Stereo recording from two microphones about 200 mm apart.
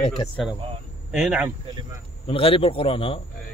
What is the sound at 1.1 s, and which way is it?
Speech, 5° right (ahead or behind).